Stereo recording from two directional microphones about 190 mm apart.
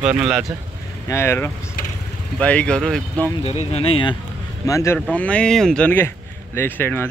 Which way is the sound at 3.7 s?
30° left (ahead or behind).